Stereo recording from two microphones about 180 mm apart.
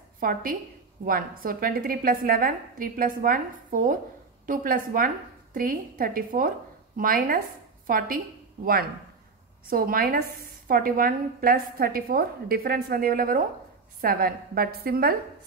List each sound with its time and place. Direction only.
0.2 s a woman's voice: 50° right (ahead or behind)
9.7 s a woman's voice: 55° right (ahead or behind)